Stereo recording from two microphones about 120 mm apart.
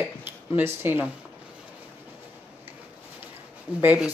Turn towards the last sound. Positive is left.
turn(degrees=-10)  # may be behind; listen again after turning